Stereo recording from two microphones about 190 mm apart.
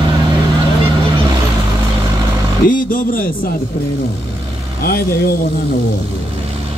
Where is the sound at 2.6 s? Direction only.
45° left (ahead or behind).